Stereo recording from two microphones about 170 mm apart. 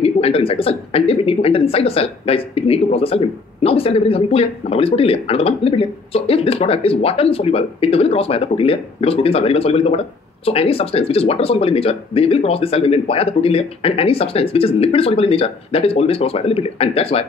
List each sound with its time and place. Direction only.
0.0 s a woman's voice: 35° left (ahead or behind)